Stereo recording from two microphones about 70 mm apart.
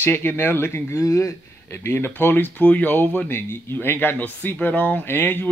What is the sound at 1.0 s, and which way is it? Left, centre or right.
Speech, left.